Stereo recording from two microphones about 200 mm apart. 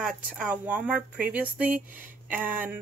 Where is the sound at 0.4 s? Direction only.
5° right (ahead or behind).